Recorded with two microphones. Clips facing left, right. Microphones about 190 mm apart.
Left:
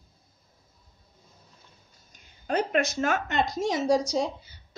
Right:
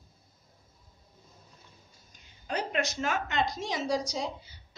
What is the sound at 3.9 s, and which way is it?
Speech, 25° left (ahead or behind).